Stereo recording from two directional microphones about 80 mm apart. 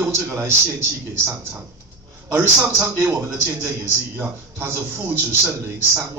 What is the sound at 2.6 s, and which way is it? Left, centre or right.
A man's voice, right.